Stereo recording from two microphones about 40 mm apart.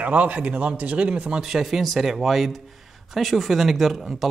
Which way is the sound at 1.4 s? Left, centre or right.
Centre.